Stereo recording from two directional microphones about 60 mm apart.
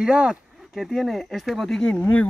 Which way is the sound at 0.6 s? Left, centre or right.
Centre.